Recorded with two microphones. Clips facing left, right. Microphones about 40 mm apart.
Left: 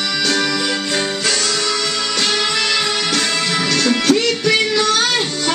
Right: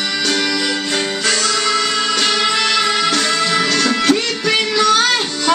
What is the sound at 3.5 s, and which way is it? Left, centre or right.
Music, right.